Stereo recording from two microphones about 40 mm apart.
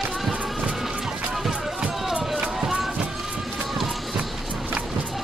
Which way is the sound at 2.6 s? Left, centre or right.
Centre.